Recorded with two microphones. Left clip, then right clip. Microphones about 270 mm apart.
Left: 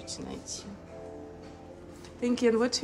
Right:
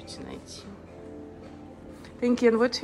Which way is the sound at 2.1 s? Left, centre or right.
Centre.